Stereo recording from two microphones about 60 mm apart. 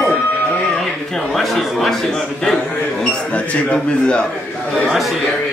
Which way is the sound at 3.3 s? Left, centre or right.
Centre.